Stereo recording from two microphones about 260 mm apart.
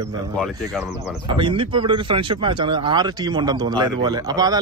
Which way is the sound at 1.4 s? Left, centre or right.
Centre.